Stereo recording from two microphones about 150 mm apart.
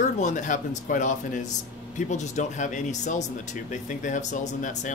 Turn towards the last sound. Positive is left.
turn(degrees=60)  # may be behind; listen again after turning